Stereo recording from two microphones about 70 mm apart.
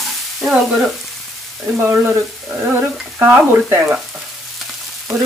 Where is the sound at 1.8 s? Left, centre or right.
Right.